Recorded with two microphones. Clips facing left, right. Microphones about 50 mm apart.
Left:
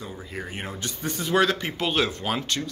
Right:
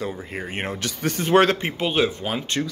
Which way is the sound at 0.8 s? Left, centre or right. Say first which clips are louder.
Right 5 dB; right.